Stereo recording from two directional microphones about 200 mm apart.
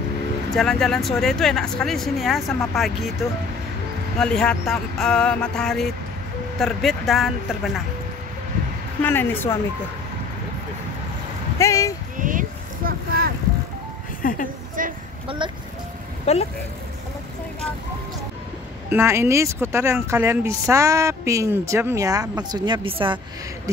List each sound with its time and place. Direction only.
0.6 s speech: centre (ahead or behind)
9.0 s speech: 10° left (ahead or behind)
11.5 s speech: 15° left (ahead or behind)
12.2 s a sound: 40° right (ahead or behind)
14.2 s a woman's voice: 45° left (ahead or behind)
14.8 s a sound: 40° right (ahead or behind)
15.2 s speech: 25° right (ahead or behind)
16.3 s speech: 30° left (ahead or behind)
18.9 s speech: 10° right (ahead or behind)